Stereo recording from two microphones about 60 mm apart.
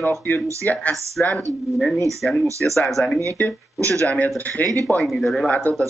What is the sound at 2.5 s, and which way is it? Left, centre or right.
Speech, right.